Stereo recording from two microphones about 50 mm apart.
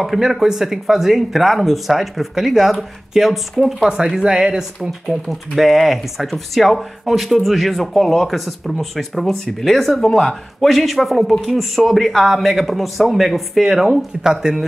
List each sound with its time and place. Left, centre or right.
0.0 s speech: centre
4.2 s speech: centre
5.0 s speech: centre
10.7 s speech: centre